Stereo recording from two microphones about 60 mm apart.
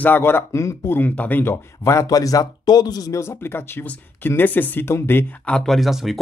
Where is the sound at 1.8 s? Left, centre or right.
Left.